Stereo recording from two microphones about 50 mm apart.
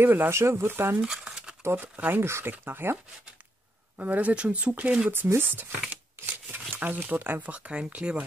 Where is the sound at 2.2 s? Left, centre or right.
Right.